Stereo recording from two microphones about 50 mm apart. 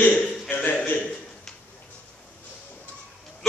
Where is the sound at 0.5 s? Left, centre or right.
Left.